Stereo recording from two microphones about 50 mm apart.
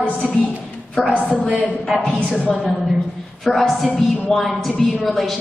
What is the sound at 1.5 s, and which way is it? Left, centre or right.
Speech, left.